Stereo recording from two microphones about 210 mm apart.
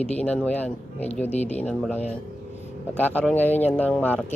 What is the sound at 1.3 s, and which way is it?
Speech, 30° left (ahead or behind).